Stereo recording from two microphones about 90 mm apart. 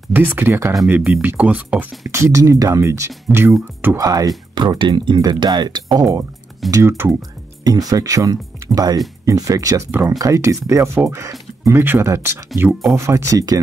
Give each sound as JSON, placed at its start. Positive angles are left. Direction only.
{"t": 0.1, "sound": "speech", "side_deg": -25}
{"t": 2.0, "sound": "speech", "side_deg": -30}
{"t": 4.0, "sound": "speech", "side_deg": -45}
{"t": 4.6, "sound": "speech", "side_deg": -60}
{"t": 6.7, "sound": "speech", "side_deg": -35}
{"t": 7.2, "sound": "speech", "side_deg": -45}
{"t": 11.8, "sound": "speech", "side_deg": -20}
{"t": 12.9, "sound": "speech", "side_deg": -35}